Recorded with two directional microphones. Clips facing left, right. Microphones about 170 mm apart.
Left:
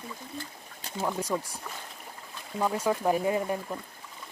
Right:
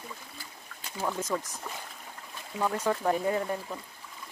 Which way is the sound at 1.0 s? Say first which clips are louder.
Left 1 dB; 10° left (ahead or behind).